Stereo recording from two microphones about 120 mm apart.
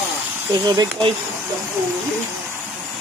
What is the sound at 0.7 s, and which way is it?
Speech, 30° right (ahead or behind).